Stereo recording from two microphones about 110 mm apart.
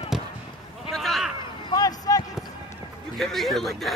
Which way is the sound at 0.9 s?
Centre (ahead or behind).